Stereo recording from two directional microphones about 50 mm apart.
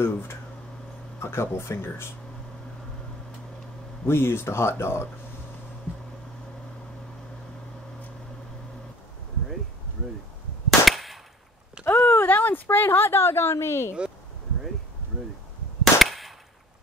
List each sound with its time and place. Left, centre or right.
0.0 s speech: left
4.0 s speech: left
10.9 s gunshot: centre
11.8 s a sound: left
15.8 s cap gun: centre